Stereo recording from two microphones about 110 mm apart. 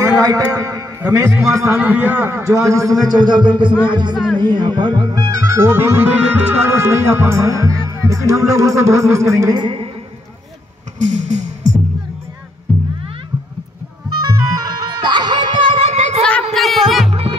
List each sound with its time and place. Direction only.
0.0 s music: 30° right (ahead or behind)
1.8 s music: 15° right (ahead or behind)
3.1 s music: 40° right (ahead or behind)
4.1 s speech: 10° right (ahead or behind)
4.4 s music: 45° right (ahead or behind); by 9.5 s 25° right (ahead or behind)
9.5 s music: 45° right (ahead or behind)
11.0 s music: 90° right
14.2 s music: 40° right (ahead or behind); by 16.2 s 75° right (ahead or behind)
16.2 s a sound: 10° left (ahead or behind)
16.5 s music: centre (ahead or behind)
17.1 s music: 60° right (ahead or behind)